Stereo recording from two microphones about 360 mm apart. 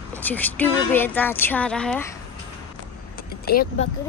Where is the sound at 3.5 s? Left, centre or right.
Left.